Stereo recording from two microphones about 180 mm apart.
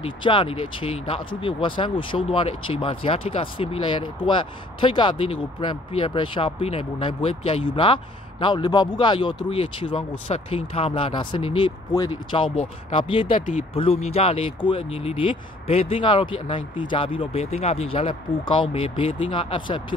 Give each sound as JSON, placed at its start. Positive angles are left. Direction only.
{"t": 0.0, "sound": "speech", "side_deg": 25}